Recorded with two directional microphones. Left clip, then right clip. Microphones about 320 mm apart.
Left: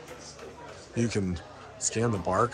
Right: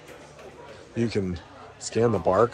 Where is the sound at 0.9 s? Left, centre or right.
Centre.